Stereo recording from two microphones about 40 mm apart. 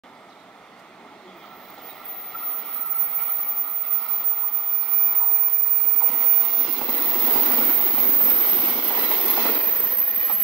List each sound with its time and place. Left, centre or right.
5.9 s vehicle: centre
7.5 s a sound: centre
8.7 s train: centre
9.6 s train: left
9.8 s train: centre